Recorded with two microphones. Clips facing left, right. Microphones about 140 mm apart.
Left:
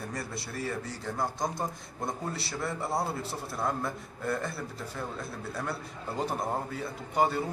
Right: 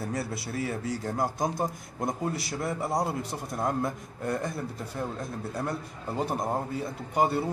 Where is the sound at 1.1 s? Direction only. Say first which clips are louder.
Right 2 dB; 20° right (ahead or behind).